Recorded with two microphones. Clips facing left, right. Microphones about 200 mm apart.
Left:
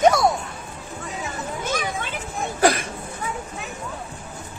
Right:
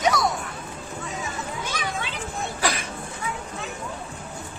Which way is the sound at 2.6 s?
50° left (ahead or behind).